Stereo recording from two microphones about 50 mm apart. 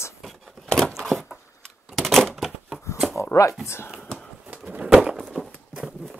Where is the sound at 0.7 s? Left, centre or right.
Centre.